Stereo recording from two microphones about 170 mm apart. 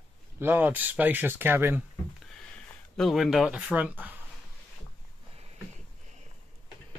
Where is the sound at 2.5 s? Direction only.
Centre (ahead or behind).